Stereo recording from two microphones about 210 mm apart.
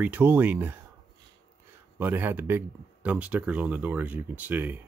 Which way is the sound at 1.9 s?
10° right (ahead or behind).